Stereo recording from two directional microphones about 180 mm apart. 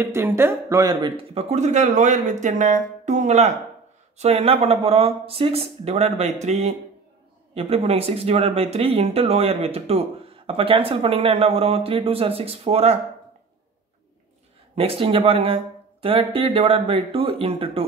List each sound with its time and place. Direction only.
0.0 s speech: 15° right (ahead or behind); by 13.0 s 35° right (ahead or behind)
14.8 s speech: 30° right (ahead or behind)